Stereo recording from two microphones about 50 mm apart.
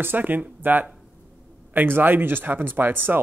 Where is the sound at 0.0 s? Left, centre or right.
Right.